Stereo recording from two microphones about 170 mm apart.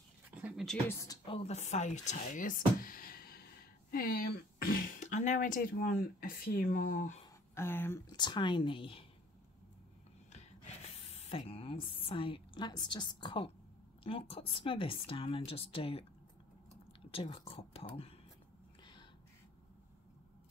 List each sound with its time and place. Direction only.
0.3 s a sound: 10° right (ahead or behind)
0.8 s speech: 20° left (ahead or behind); by 7.2 s 45° left (ahead or behind)
7.5 s speech: 15° left (ahead or behind)
8.1 s speech: 25° left (ahead or behind)
10.3 s a woman's voice: 40° left (ahead or behind)
17.1 s a woman's voice: 35° left (ahead or behind)